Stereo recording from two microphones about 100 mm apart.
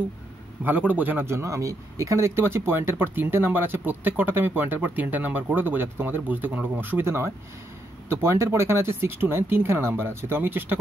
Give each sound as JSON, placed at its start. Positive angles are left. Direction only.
{"t": 0.7, "sound": "speech", "side_deg": -15}